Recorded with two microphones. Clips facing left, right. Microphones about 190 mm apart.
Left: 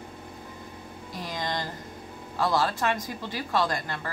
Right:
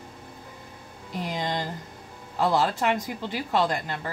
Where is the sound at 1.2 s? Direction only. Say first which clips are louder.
Right 2 dB; 20° right (ahead or behind).